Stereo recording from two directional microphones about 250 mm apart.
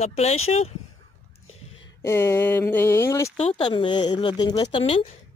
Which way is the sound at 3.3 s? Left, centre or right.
Left.